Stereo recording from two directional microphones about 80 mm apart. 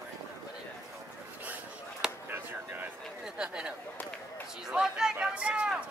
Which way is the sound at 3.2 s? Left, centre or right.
Centre.